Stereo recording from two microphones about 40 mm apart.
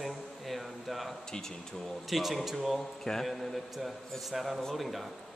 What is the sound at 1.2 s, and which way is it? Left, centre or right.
Speech, centre.